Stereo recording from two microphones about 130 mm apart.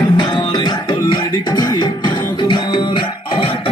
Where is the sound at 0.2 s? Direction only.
35° left (ahead or behind).